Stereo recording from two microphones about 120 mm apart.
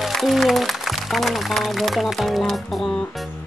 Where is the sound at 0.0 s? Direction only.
Centre (ahead or behind).